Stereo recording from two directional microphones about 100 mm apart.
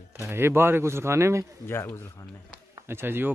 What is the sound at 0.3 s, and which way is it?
Speech, 25° right (ahead or behind).